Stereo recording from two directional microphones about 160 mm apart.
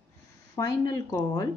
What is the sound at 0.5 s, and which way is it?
Speech, 25° left (ahead or behind).